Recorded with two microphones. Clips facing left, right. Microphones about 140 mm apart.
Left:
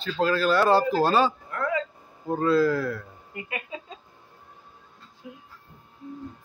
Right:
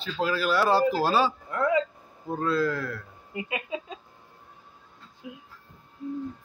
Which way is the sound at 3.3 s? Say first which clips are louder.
Right 3 dB; 20° right (ahead or behind).